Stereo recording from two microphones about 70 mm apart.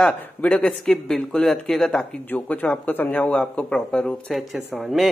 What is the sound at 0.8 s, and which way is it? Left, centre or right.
Speech, centre.